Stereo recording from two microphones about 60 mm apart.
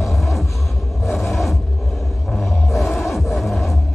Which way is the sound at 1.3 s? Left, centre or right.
Centre.